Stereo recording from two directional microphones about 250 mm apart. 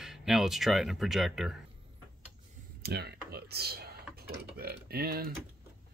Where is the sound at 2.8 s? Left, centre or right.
Right.